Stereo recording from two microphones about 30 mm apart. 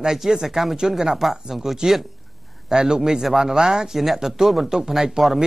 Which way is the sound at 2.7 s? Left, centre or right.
Right.